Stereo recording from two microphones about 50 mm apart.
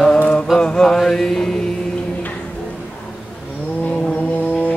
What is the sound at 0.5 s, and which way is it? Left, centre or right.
Mantra, centre.